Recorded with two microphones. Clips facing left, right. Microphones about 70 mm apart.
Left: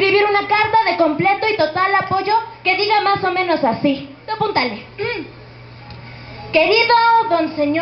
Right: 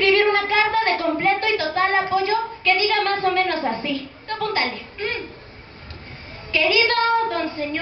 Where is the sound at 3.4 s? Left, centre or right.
Left.